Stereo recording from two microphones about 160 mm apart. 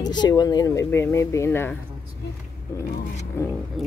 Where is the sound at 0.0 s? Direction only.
25° left (ahead or behind).